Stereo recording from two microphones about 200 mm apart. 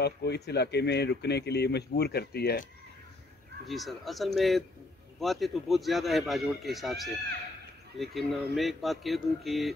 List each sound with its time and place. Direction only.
0.0 s speech: 55° left (ahead or behind)
3.6 s a man's voice: centre (ahead or behind)